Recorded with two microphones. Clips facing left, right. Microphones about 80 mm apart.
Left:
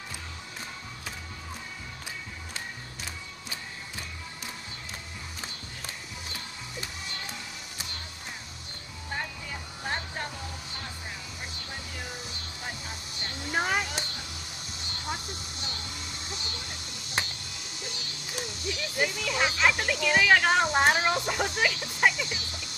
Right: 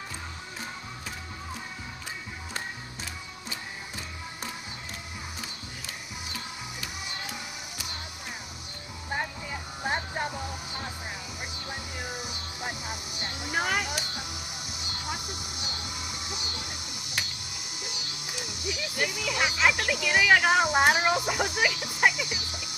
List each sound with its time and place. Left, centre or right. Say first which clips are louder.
9.1 s vehicle: right 3 dB; centre
12.0 s music: right 3 dB; centre
17.5 s a sound: even; centre
19.0 s music: even; centre